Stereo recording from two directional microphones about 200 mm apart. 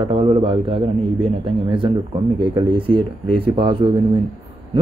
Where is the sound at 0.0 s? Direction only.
25° right (ahead or behind).